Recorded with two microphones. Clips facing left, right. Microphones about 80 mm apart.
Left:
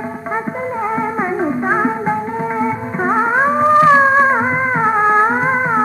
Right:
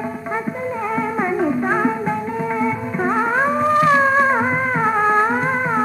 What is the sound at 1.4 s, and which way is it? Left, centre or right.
Music, left.